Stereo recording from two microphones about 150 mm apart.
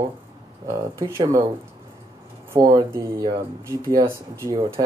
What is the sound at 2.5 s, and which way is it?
Speech, 20° right (ahead or behind).